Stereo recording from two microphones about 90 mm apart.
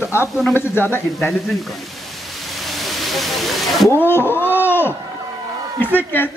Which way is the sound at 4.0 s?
25° left (ahead or behind).